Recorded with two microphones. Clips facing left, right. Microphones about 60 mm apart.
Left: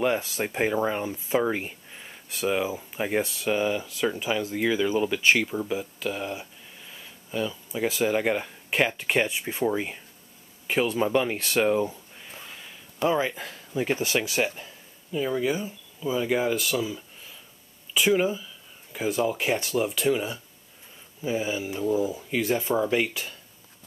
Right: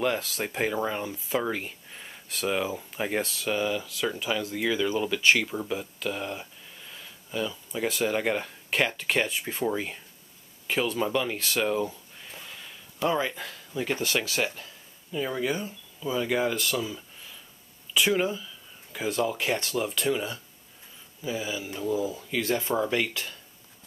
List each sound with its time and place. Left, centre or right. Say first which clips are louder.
0.0 s speech: left 2 dB; centre
1.9 s speech: even; centre
11.3 s speech: left 4 dB; left
11.6 s a sound: left 4 dB; left
15.1 s speech: left 3 dB; centre
21.2 s speech: left 4 dB; left
21.6 s speech: left 1 dB; centre